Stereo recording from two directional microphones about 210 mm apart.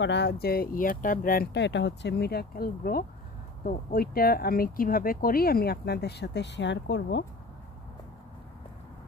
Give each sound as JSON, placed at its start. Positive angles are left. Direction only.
{"t": 0.0, "sound": "speech", "side_deg": 55}